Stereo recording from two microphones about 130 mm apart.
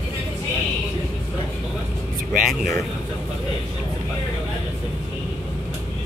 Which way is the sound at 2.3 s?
5° right (ahead or behind).